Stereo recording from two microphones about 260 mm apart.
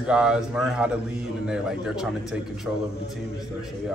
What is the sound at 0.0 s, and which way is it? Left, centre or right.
Speech, centre.